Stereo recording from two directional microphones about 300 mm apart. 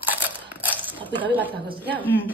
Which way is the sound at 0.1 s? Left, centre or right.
Centre.